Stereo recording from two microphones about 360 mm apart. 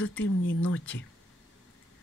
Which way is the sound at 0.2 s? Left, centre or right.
Left.